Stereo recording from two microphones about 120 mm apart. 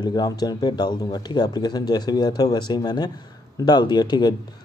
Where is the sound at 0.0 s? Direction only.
35° left (ahead or behind).